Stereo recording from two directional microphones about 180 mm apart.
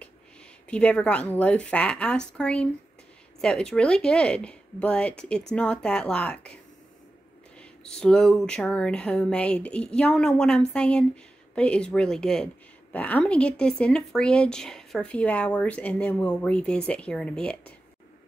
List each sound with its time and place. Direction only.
0.7 s a woman's voice: 5° left (ahead or behind)